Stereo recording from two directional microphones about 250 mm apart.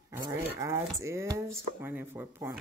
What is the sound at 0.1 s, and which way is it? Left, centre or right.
Speech, centre.